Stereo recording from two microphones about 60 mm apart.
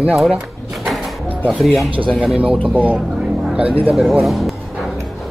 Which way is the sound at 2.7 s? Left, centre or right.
Right.